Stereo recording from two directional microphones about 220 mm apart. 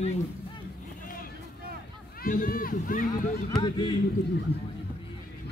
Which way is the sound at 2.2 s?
40° left (ahead or behind).